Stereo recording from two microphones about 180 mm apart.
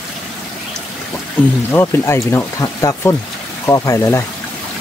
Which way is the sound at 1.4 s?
10° left (ahead or behind).